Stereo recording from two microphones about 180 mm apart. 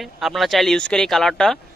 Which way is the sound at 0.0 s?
Centre (ahead or behind).